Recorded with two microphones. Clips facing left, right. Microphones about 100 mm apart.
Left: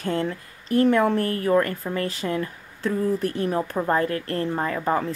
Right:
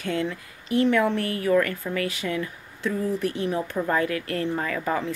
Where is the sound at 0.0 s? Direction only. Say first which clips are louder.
Left 2 dB; 40° left (ahead or behind).